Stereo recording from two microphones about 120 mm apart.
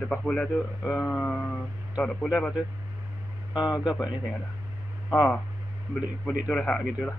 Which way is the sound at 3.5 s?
35° left (ahead or behind).